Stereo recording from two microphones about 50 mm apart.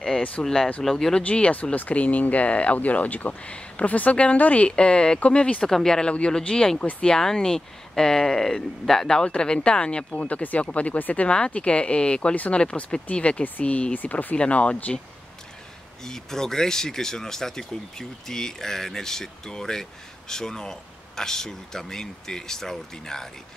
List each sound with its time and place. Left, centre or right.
0.4 s speech: centre
1.2 s speech: left
5.7 s speech: centre
10.2 s speech: left
16.1 s speech: centre